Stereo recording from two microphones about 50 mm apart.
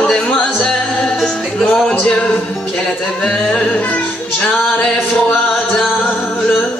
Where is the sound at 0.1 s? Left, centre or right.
Centre.